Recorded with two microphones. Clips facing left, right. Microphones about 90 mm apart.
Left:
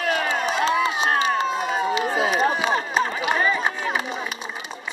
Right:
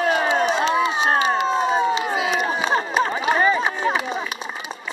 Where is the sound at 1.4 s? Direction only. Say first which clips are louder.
Right 4 dB; 30° right (ahead or behind).